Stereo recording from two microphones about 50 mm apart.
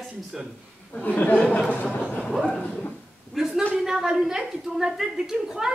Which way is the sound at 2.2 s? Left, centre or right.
Centre.